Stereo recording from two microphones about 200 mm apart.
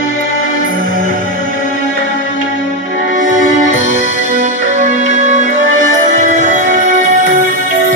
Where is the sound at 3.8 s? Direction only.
70° left (ahead or behind).